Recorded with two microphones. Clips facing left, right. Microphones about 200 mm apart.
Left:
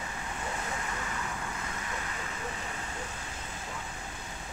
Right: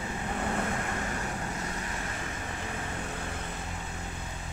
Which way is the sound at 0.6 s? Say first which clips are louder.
Right 5 dB; 55° right (ahead or behind).